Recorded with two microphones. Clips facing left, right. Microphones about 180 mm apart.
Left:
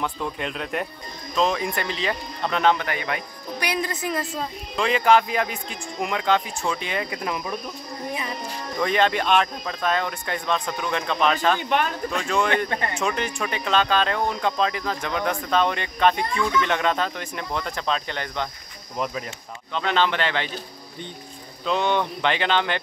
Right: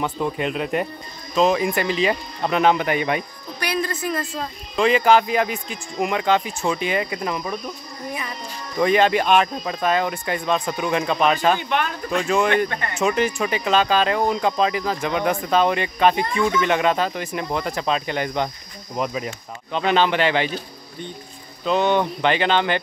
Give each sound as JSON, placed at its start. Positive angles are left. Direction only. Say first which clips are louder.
{"t": 0.0, "sound": "speech", "louder": "right 5 dB", "side_deg": -5}
{"t": 3.5, "sound": "music", "louder": "right 2 dB", "side_deg": 15}
{"t": 4.4, "sound": "speech", "louder": "right 4 dB", "side_deg": 0}
{"t": 8.7, "sound": "speech", "louder": "right 4 dB", "side_deg": -5}
{"t": 12.6, "sound": "speech", "louder": "even", "side_deg": 30}
{"t": 13.0, "sound": "speech", "louder": "right 10 dB", "side_deg": -5}
{"t": 21.6, "sound": "speech", "louder": "right 4 dB", "side_deg": -5}